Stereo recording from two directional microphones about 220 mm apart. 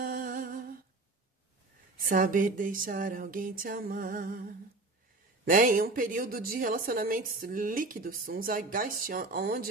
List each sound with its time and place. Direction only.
0.0 s humming: 40° right (ahead or behind)
2.0 s a woman's voice: 40° right (ahead or behind)